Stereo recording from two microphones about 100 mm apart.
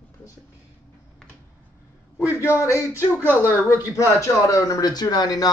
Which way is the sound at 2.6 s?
30° left (ahead or behind).